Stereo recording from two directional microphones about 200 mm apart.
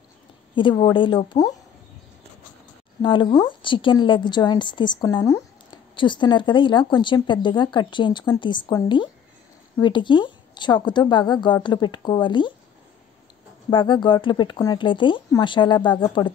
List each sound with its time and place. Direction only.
0.6 s speech: 25° left (ahead or behind)
3.0 s speech: 25° left (ahead or behind)
13.7 s speech: 25° left (ahead or behind)